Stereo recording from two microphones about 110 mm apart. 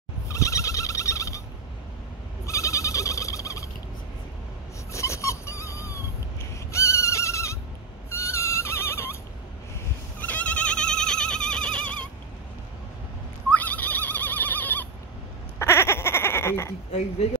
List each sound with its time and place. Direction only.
0.3 s a sound: 30° left (ahead or behind)
2.4 s bleat: 30° left (ahead or behind)
4.9 s dog: 25° left (ahead or behind)
6.7 s neigh: 25° left (ahead or behind)
10.2 s goat: 15° left (ahead or behind)
13.5 s neigh: 15° left (ahead or behind)
15.6 s bleat: 20° left (ahead or behind)